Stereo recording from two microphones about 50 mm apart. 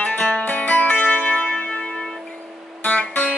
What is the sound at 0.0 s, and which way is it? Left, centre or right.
Music, left.